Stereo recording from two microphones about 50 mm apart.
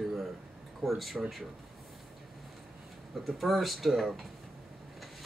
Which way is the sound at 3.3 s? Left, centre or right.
Centre.